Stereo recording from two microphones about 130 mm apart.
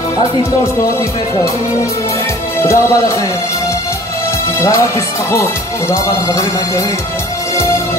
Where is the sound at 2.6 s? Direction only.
20° left (ahead or behind).